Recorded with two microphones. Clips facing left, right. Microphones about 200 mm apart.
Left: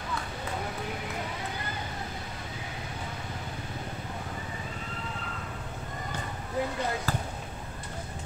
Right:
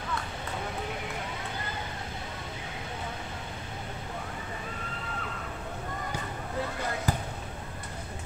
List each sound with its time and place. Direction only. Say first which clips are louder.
7.1 s speech: right 1 dB; 20° right (ahead or behind)